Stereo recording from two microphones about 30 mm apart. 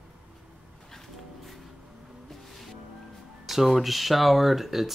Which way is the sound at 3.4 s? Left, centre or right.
Centre.